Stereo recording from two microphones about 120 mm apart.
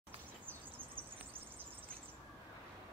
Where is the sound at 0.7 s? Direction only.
15° right (ahead or behind).